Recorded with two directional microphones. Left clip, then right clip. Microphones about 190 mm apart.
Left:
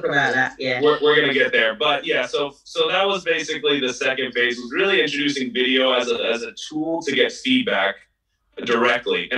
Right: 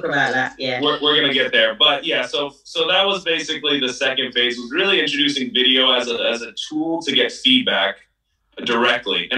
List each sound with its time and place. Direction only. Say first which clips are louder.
0.2 s speech: even; centre (ahead or behind)